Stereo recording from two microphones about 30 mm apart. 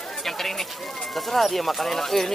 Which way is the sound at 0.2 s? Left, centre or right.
Centre.